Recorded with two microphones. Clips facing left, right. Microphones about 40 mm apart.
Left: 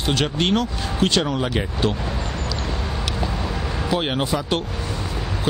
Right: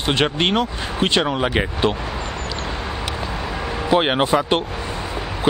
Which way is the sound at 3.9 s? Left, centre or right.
Right.